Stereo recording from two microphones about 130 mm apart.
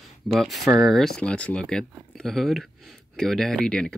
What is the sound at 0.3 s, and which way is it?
Speech, centre (ahead or behind).